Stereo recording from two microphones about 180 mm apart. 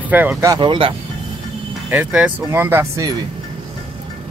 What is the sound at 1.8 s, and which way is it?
Speech, 5° right (ahead or behind).